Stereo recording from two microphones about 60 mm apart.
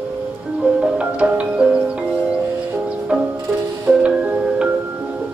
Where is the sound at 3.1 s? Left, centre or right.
Right.